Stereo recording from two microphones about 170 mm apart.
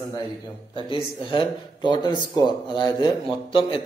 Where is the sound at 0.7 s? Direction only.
30° left (ahead or behind).